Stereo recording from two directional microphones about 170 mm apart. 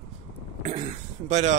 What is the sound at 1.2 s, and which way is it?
Speech, 45° right (ahead or behind).